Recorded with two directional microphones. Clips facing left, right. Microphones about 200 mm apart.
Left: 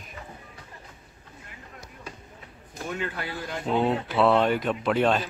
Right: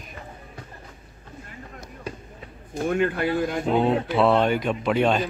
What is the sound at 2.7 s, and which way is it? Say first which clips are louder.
Speech: right 9 dB; 50° right (ahead or behind).